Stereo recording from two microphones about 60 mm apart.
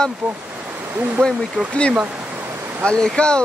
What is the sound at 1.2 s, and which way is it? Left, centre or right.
Speech, right.